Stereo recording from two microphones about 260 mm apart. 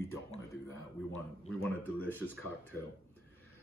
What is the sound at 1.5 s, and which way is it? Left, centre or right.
Speech, centre.